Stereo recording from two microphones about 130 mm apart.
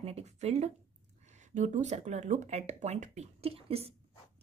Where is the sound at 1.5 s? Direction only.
65° right (ahead or behind); by 4.0 s 50° right (ahead or behind).